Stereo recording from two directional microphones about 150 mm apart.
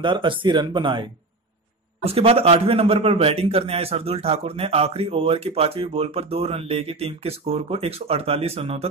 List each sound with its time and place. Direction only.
0.0 s a man's voice: 35° right (ahead or behind)
2.0 s a man's voice: 40° right (ahead or behind)